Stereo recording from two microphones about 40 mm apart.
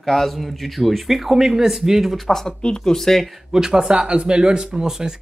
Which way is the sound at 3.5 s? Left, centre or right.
Centre.